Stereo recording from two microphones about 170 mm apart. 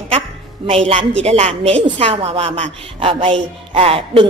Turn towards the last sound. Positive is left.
turn(degrees=-35)  # may be behind; listen again after turning